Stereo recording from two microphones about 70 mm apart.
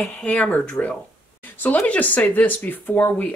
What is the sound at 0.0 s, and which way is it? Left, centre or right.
Speech, centre.